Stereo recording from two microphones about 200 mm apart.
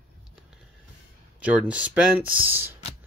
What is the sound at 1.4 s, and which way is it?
Speech, 5° right (ahead or behind).